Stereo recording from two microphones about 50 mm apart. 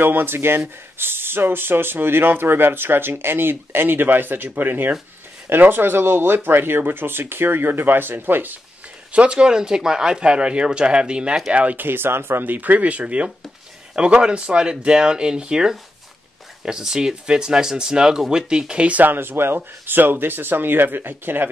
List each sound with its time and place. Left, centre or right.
0.0 s speech: right
9.1 s speech: right
11.5 s speech: right
11.8 s speech: right
12.5 s speech: right
19.0 s speech: right